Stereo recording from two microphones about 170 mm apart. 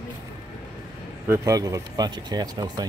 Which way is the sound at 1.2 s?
15° right (ahead or behind).